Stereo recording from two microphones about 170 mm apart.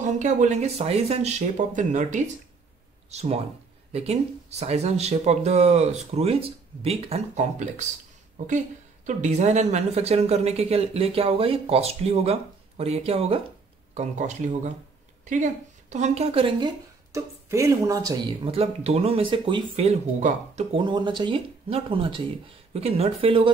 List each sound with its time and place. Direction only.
0.0 s a woman's voice: 45° right (ahead or behind)
20.7 s a woman's voice: 25° right (ahead or behind)